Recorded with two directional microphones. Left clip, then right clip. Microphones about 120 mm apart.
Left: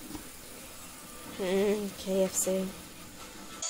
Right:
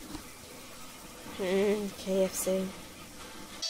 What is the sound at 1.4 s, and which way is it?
Speech, 5° left (ahead or behind).